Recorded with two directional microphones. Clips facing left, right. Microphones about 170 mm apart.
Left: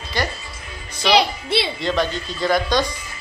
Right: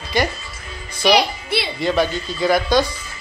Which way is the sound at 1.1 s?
25° left (ahead or behind).